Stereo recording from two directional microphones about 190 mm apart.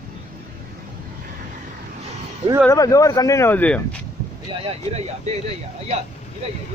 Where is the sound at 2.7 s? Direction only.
15° left (ahead or behind).